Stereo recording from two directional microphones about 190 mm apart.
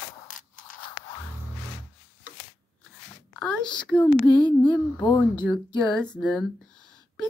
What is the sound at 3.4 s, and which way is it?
Speech, 5° left (ahead or behind).